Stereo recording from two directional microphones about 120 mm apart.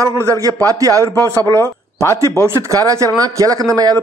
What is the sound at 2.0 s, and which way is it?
Speech, 25° left (ahead or behind).